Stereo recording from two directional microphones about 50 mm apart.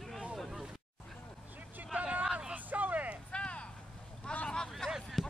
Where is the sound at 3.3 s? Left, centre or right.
Left.